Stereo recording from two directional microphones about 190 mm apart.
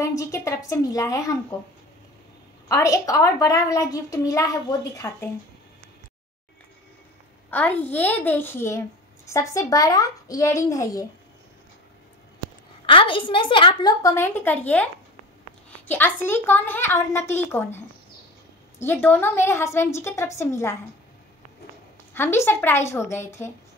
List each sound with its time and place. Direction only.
0.0 s a woman's voice: 15° left (ahead or behind)
2.7 s a child's voice: 15° left (ahead or behind)
7.5 s a child's voice: 10° left (ahead or behind)
12.8 s a woman's voice: 25° left (ahead or behind); by 14.9 s 10° left (ahead or behind)
15.9 s a child's voice: 10° left (ahead or behind)
22.1 s a child's voice: 10° left (ahead or behind)